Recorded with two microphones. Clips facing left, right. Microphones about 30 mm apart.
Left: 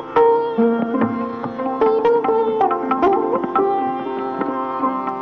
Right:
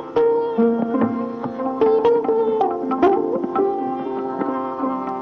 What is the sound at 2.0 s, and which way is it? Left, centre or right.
Music, left.